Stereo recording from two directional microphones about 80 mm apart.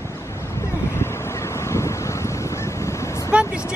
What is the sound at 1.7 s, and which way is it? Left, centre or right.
Wind, left.